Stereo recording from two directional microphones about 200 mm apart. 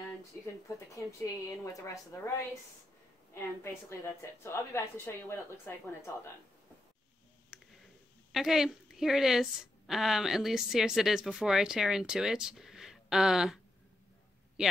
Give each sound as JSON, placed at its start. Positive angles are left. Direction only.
{"t": 0.7, "sound": "a woman's voice", "side_deg": 15}
{"t": 3.3, "sound": "a woman's voice", "side_deg": 15}
{"t": 7.5, "sound": "a sound", "side_deg": -5}
{"t": 8.3, "sound": "a woman's voice", "side_deg": 0}